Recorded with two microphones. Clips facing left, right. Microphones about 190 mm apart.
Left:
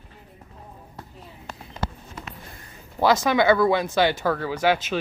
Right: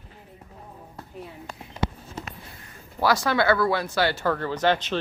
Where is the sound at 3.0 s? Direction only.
20° left (ahead or behind).